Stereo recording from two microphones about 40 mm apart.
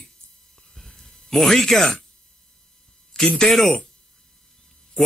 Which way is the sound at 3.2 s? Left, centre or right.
Centre.